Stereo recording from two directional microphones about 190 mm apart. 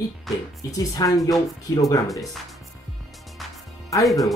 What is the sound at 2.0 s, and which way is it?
Speech, centre (ahead or behind).